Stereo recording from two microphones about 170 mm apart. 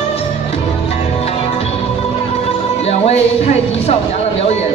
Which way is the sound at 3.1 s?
40° left (ahead or behind).